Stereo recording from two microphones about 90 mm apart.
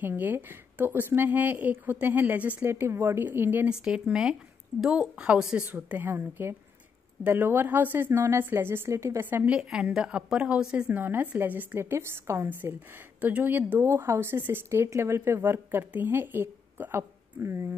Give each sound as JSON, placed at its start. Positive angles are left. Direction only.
{"t": 0.0, "sound": "speech", "side_deg": -20}
{"t": 3.6, "sound": "a woman's voice", "side_deg": -10}
{"t": 9.6, "sound": "speech", "side_deg": -10}